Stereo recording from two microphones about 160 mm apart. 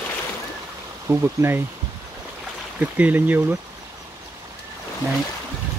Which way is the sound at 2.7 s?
10° right (ahead or behind).